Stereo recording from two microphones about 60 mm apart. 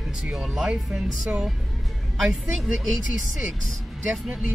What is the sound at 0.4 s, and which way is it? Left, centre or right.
Speech, centre.